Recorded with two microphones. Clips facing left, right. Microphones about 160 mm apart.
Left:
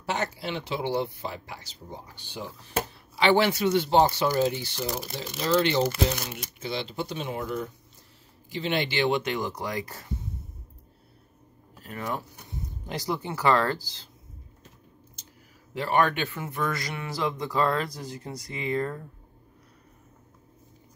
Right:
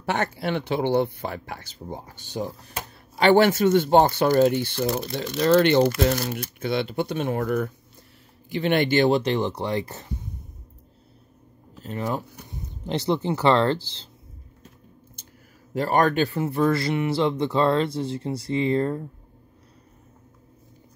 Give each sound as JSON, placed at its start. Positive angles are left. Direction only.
{"t": 0.0, "sound": "speech", "side_deg": -55}
{"t": 11.8, "sound": "speech", "side_deg": -25}
{"t": 15.7, "sound": "speech", "side_deg": -40}